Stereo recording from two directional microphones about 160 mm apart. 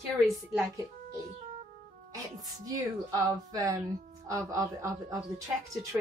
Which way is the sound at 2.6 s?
25° right (ahead or behind).